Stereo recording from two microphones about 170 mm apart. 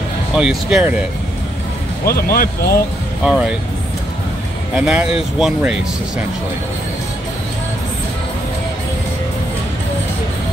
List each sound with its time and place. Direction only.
0.4 s speech: 5° right (ahead or behind)
2.0 s speech: 60° left (ahead or behind)
3.3 s speech: 5° right (ahead or behind)
4.7 s speech: 5° right (ahead or behind)